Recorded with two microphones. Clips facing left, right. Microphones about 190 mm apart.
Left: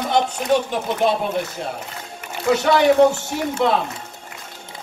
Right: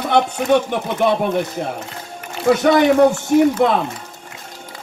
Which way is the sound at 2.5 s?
55° right (ahead or behind).